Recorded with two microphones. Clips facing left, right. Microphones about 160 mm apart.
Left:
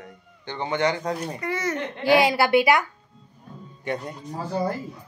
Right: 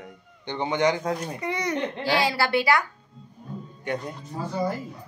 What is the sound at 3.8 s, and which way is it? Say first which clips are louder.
Speech: left 1 dB; centre (ahead or behind).